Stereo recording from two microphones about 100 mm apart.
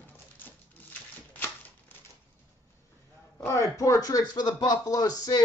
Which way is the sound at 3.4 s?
35° left (ahead or behind).